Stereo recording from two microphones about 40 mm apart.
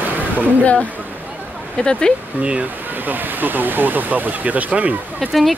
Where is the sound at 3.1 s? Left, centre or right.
Right.